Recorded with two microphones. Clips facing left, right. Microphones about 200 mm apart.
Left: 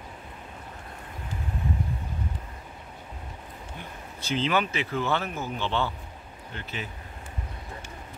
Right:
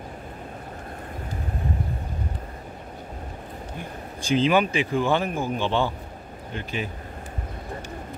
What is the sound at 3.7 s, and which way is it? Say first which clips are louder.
Speech: right 6 dB; 15° right (ahead or behind).